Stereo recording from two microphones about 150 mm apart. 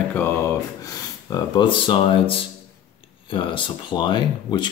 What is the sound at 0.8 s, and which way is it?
Speech, 25° left (ahead or behind).